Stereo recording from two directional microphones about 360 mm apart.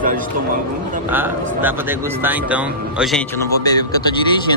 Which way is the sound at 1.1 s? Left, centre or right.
Centre.